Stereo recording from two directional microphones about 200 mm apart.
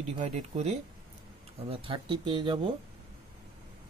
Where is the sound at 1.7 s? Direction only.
25° right (ahead or behind).